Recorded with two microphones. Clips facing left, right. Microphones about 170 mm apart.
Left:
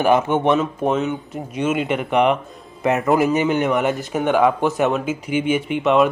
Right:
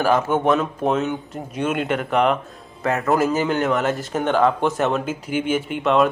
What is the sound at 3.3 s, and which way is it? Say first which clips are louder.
A man's voice: left 2 dB; centre (ahead or behind).